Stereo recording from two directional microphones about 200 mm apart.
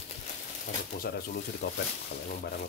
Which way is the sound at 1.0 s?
55° left (ahead or behind).